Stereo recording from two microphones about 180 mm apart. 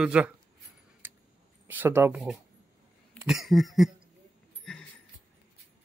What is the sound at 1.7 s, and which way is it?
Speech, 10° right (ahead or behind).